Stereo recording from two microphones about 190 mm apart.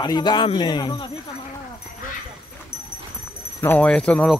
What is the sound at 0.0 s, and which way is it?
Speech, 20° left (ahead or behind).